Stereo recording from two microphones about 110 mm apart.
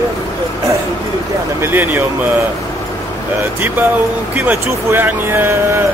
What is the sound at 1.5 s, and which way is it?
Speech, 20° right (ahead or behind).